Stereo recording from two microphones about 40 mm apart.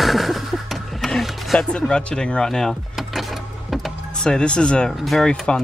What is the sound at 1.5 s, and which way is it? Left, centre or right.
Speech, left.